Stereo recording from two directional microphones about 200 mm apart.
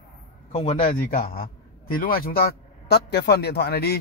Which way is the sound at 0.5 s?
35° left (ahead or behind).